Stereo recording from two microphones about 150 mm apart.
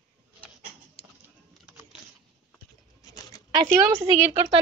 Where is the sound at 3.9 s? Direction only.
40° right (ahead or behind).